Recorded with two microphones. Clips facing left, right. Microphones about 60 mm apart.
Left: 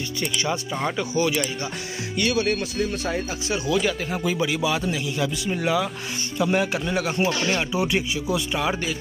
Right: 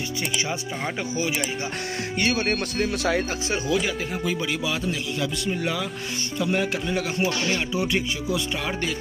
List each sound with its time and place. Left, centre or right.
1.1 s speech: centre
2.1 s speech: right
2.5 s speech: right
3.4 s speech: right
3.7 s speech: centre